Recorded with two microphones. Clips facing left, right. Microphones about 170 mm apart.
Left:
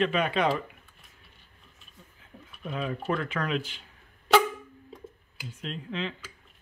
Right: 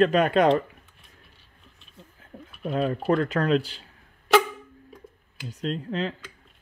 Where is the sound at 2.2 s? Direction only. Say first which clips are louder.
Right 7 dB; 50° right (ahead or behind).